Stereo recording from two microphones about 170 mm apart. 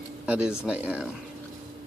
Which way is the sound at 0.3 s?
5° right (ahead or behind).